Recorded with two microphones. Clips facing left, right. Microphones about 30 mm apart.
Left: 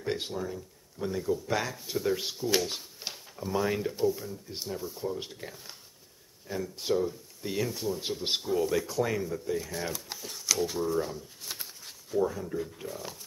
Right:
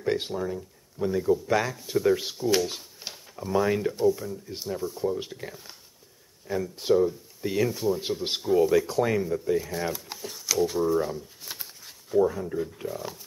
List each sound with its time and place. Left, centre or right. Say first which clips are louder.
0.0 s speech: right 5 dB; centre
2.7 s a sound: even; centre
3.3 s speech: right 5 dB; centre
8.8 s speech: right 5 dB; right
9.6 s speech: right 5 dB; centre
12.1 s speech: right 5 dB; centre